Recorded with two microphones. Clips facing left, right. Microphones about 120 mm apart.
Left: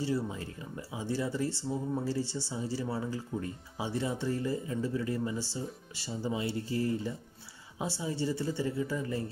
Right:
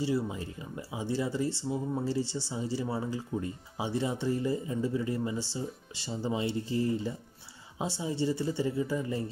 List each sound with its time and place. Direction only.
0.1 s speech: 15° right (ahead or behind)
7.8 s speech: 20° right (ahead or behind)